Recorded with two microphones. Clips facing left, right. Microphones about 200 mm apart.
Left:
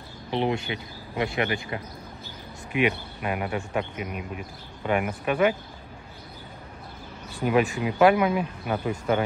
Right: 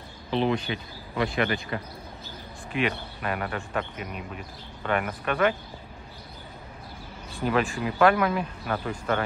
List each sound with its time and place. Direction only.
0.3 s speech: 20° left (ahead or behind)
2.7 s speech: 10° left (ahead or behind)
7.4 s speech: 10° left (ahead or behind)